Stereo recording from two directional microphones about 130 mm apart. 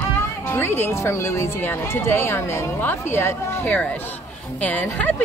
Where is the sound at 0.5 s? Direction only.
15° left (ahead or behind).